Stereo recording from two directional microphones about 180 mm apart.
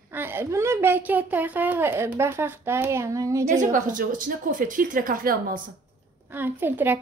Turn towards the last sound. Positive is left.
turn(degrees=-10)  # may be behind; listen again after turning